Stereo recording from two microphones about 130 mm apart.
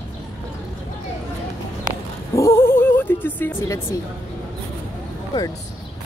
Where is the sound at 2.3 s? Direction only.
20° left (ahead or behind).